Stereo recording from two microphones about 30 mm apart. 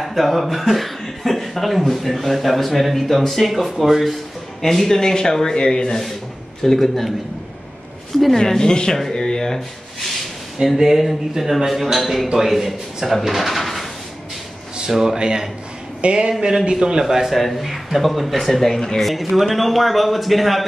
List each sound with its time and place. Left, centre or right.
0.0 s speech: centre
4.0 s a sound: centre
4.6 s speech: centre
6.6 s speech: centre
8.4 s speech: left
10.8 s speech: centre
13.2 s drawer open or close: centre
14.9 s speech: centre
15.1 s speech: right
16.0 s speech: right
17.0 s speech: centre
17.4 s speech: centre
18.5 s speech: centre
18.9 s speech: centre